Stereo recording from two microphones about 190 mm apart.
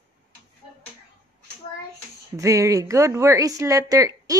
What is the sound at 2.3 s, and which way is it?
A woman's voice, 15° right (ahead or behind).